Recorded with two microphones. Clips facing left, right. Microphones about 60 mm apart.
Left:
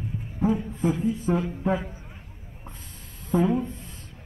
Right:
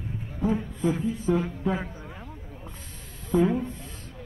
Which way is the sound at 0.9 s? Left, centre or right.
Right.